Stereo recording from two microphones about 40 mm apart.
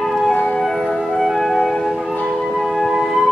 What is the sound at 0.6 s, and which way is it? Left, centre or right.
Music, centre.